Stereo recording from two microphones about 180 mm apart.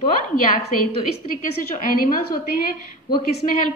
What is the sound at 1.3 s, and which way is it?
A woman's voice, 50° left (ahead or behind).